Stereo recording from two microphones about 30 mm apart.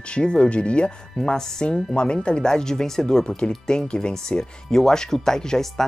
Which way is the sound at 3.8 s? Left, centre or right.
Left.